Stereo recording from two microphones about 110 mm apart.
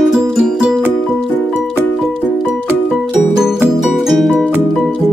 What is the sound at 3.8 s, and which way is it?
Music, centre (ahead or behind).